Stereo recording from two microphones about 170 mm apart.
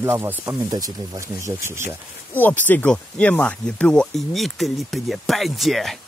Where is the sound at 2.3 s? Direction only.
10° left (ahead or behind).